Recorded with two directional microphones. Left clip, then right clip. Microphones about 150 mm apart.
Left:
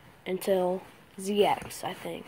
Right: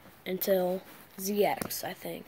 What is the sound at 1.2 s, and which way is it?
Speech, 20° right (ahead or behind).